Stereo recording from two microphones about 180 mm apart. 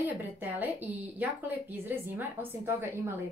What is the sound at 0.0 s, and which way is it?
A woman's voice, 10° right (ahead or behind).